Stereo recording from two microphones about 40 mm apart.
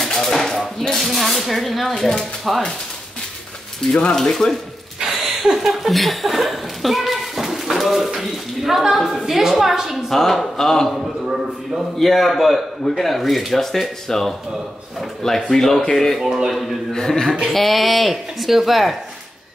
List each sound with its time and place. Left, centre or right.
0.0 s speech: centre
2.5 s speech: centre
3.9 s speech: centre
5.0 s a sound: centre
5.9 s speech: centre
12.0 s speech: centre
15.5 s speech: centre
16.2 s a man's voice: centre
16.4 s speech: centre
16.9 s speech: centre